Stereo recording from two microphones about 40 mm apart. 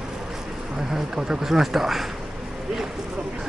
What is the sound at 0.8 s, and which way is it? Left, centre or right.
Speech, centre.